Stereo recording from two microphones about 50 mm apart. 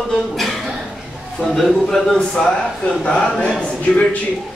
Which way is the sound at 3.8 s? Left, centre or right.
Left.